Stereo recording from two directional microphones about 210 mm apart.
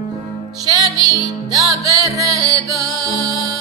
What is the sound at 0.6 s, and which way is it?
Music, 20° right (ahead or behind).